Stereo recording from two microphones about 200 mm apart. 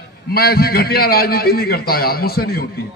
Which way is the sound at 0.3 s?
50° left (ahead or behind).